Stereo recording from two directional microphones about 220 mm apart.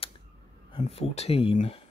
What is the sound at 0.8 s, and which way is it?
Speech, 30° left (ahead or behind).